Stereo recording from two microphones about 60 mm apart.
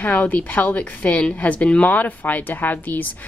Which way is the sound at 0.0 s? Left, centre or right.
Left.